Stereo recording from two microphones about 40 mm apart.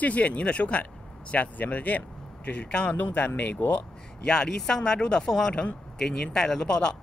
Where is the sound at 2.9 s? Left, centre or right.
Left.